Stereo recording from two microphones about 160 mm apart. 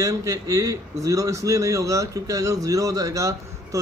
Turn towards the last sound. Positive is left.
turn(degrees=-20)  # may be behind; listen again after turning